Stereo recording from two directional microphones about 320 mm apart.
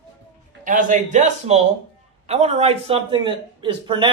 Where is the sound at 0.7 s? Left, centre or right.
Right.